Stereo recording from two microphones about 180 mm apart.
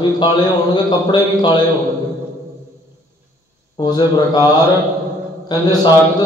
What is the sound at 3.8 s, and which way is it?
Speech, 25° left (ahead or behind).